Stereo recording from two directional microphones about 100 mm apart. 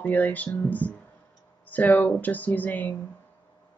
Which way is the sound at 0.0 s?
15° left (ahead or behind).